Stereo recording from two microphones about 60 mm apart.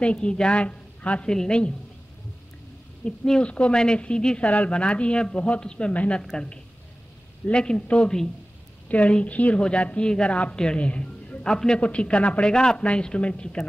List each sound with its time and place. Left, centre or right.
0.0 s a man's voice: centre
3.1 s a man's voice: centre
11.4 s a man's voice: centre